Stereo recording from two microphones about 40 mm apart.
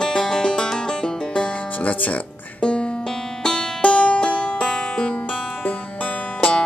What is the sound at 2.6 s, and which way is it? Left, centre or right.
Music, left.